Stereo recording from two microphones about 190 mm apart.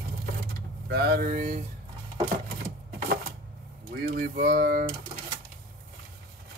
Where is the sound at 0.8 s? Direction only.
60° right (ahead or behind).